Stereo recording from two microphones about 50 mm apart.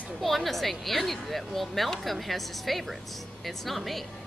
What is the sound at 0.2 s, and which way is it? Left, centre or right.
Speech, centre.